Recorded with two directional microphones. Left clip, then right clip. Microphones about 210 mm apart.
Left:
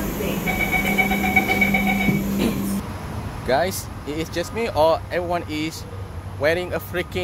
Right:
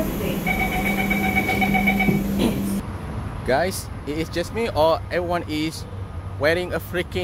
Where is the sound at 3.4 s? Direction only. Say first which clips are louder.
Left 1 dB; 5° right (ahead or behind).